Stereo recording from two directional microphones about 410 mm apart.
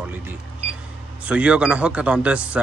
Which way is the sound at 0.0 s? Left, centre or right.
Centre.